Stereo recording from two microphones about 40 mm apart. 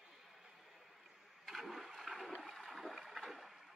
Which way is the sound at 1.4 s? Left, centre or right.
Centre.